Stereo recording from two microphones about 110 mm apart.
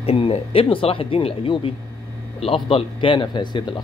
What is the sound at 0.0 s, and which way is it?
A man's voice, 60° left (ahead or behind).